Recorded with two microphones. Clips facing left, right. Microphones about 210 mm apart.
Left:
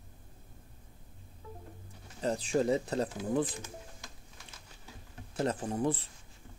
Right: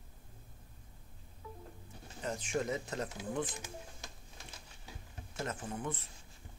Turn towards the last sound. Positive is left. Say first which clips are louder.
# left 8 dB
turn(degrees=35)  # may be behind; listen again after turning